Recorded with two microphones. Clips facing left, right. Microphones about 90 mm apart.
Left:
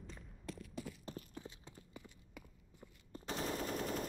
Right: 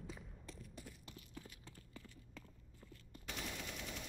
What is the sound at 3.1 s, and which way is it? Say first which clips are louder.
Machine gun: left 8 dB; 35° left (ahead or behind).